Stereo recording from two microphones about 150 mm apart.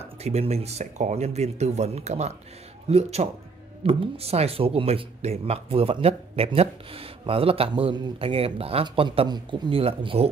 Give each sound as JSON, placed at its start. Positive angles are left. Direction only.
{"t": 0.0, "sound": "speech", "side_deg": -45}